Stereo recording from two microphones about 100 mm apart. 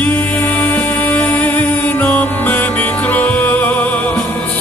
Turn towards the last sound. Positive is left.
turn(degrees=15)  # may be behind; listen again after turning